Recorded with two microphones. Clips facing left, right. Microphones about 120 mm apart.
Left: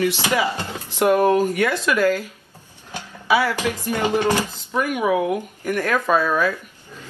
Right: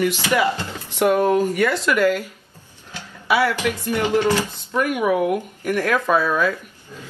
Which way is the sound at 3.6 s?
15° left (ahead or behind).